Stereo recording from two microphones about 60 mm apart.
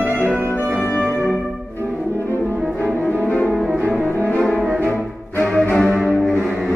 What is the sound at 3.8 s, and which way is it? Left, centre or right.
Brass instrument, left.